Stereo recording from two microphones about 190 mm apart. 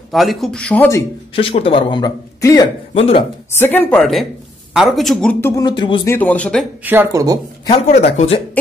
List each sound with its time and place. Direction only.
0.1 s speech: centre (ahead or behind)
1.3 s a man's voice: 30° left (ahead or behind)
2.9 s speech: 30° left (ahead or behind)
3.5 s speech: 10° left (ahead or behind)
6.1 s speech: 10° left (ahead or behind)
6.8 s speech: 10° right (ahead or behind)
7.6 s speech: 35° left (ahead or behind)